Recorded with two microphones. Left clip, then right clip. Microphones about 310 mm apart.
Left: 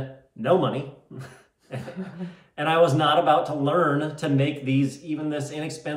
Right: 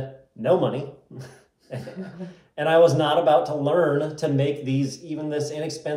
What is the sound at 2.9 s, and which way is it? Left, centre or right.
Speech, centre.